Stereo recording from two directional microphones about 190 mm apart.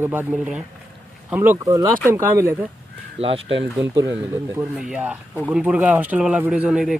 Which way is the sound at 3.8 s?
15° right (ahead or behind).